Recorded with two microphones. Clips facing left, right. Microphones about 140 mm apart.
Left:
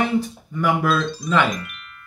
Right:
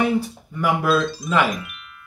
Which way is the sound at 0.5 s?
5° right (ahead or behind).